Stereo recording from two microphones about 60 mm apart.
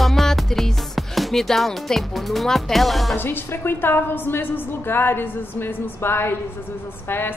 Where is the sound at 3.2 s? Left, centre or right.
Left.